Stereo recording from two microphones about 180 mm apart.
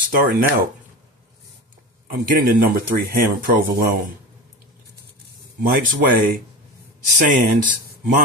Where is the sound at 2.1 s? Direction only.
50° right (ahead or behind).